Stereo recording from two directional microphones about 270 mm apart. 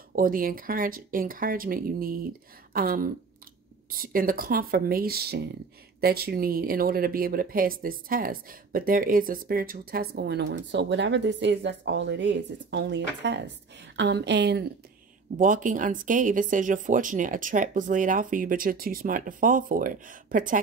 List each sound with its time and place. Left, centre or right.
0.1 s a woman's voice: right